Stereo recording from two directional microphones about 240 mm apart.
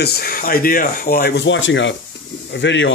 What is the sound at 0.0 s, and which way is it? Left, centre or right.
Speech, left.